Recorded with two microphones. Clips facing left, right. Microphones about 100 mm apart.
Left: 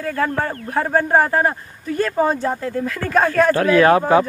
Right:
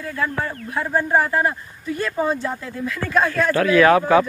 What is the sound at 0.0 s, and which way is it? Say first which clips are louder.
A man's voice: left 4 dB; 50° left (ahead or behind).